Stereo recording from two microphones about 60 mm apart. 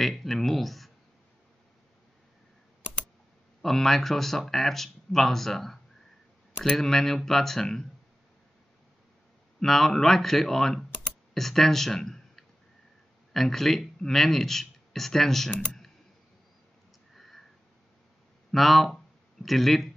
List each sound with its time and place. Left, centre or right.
0.0 s speech: centre
3.6 s speech: centre
9.6 s speech: centre
17.1 s a sound: centre
18.5 s speech: centre